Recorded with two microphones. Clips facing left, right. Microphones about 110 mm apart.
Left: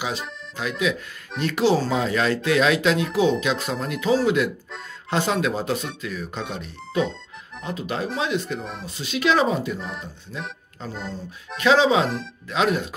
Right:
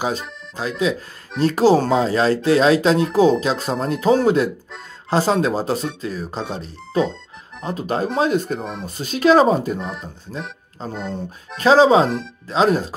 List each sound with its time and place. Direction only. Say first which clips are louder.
0.6 s speech: right 3 dB; 35° right (ahead or behind)
5.1 s speech: right 5 dB; 35° right (ahead or behind)
9.8 s speech: right 4 dB; centre (ahead or behind)
11.5 s speech: right 5 dB; 35° right (ahead or behind)